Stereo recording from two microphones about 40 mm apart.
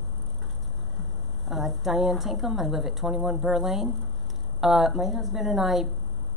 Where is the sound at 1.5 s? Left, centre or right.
Centre.